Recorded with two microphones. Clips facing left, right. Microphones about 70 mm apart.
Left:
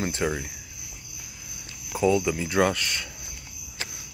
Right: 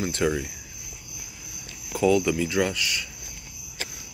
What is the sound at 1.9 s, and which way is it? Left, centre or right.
Cricket, centre.